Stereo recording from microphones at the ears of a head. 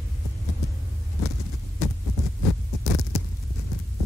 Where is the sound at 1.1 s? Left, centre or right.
Left.